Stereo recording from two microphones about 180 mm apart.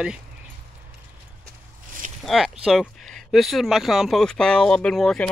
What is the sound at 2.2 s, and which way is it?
Speech, centre (ahead or behind).